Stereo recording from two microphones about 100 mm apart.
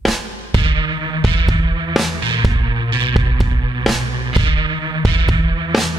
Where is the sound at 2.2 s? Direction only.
50° right (ahead or behind).